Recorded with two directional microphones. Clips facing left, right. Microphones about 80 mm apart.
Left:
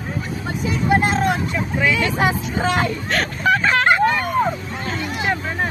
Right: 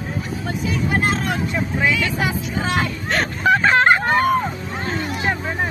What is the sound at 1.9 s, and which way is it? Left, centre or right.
Speech, left.